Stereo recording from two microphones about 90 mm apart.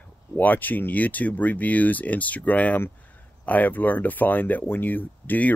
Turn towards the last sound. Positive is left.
turn(degrees=20)  # may be behind; listen again after turning